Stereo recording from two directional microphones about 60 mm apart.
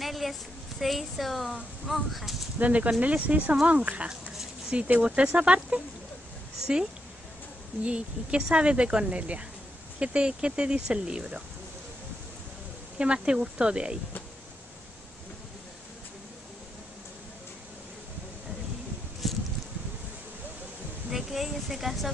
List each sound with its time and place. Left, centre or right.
0.0 s a woman's voice: centre
2.6 s speech: right
4.1 s a sound: centre
5.0 s speech: centre
7.8 s speech: centre
12.9 s speech: centre
19.2 s a sound: centre
21.1 s a woman's voice: centre